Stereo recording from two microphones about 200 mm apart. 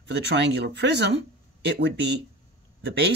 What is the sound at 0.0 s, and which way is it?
Speech, 60° right (ahead or behind).